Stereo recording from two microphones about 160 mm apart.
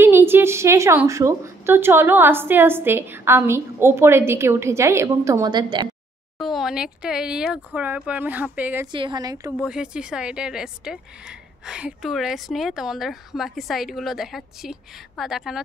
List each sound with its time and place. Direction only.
0.0 s a woman's voice: 15° right (ahead or behind)
6.3 s speech: centre (ahead or behind)
8.9 s a woman's voice: 30° right (ahead or behind)
9.6 s speech: 5° right (ahead or behind)